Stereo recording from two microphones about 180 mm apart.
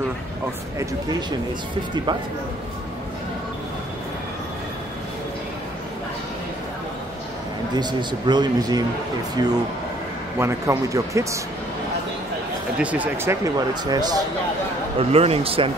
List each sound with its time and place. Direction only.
7.7 s a man's voice: 25° right (ahead or behind)
12.7 s speech: 10° right (ahead or behind)
15.0 s speech: 35° right (ahead or behind)